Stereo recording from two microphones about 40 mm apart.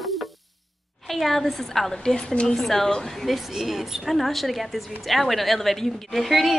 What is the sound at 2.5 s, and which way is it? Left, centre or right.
A woman's voice, centre.